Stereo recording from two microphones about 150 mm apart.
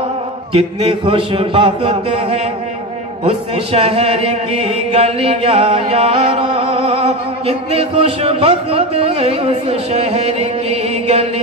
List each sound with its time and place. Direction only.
0.5 s chant: 40° right (ahead or behind)